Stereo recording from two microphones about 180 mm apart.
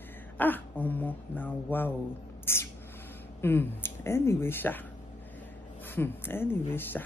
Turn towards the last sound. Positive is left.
turn(degrees=10)  # may be behind; listen again after turning